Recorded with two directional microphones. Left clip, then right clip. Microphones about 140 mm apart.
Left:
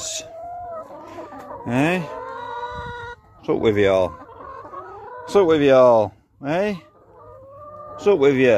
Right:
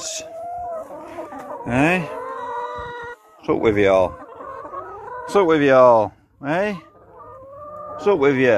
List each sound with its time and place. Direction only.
0.0 s a sound: 40° left (ahead or behind)
0.8 s chicken: 15° right (ahead or behind)
1.6 s livestock: 45° left (ahead or behind)
2.5 s a sound: 25° left (ahead or behind)
3.4 s speech: 45° left (ahead or behind)
5.3 s speech: 60° left (ahead or behind)
8.0 s speech: 65° left (ahead or behind)